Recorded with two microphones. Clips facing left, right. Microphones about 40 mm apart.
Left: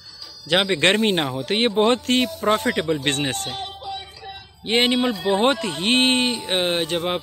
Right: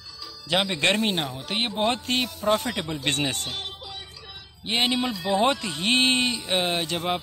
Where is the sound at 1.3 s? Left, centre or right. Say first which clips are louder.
Left 8 dB; left.